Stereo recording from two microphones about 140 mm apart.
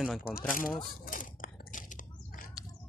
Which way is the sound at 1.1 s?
75° left (ahead or behind).